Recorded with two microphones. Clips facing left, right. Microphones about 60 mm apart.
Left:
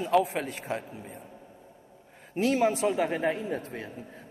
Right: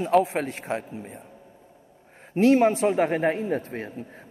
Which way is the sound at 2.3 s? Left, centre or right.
Right.